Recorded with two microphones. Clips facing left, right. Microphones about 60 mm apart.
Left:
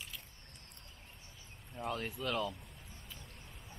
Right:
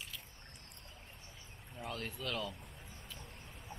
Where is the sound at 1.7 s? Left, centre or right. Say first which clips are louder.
Left 4 dB; centre.